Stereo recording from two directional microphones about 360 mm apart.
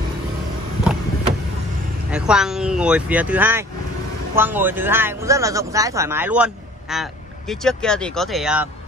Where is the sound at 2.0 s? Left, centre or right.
Centre.